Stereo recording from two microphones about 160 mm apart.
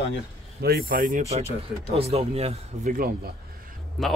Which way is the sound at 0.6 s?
75° right (ahead or behind).